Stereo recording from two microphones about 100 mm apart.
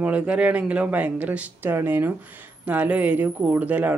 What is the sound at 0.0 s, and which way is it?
Speech, 15° right (ahead or behind).